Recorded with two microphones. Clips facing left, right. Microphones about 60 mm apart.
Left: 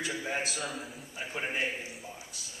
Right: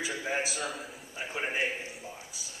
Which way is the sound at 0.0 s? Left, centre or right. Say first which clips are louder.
Right 1 dB; centre.